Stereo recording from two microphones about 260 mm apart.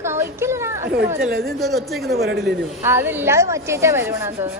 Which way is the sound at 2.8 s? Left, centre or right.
Centre.